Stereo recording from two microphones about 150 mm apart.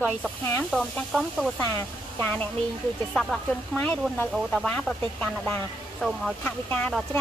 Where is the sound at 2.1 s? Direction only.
10° left (ahead or behind).